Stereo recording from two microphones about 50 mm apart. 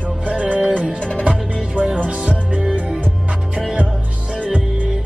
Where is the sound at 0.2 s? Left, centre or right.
Right.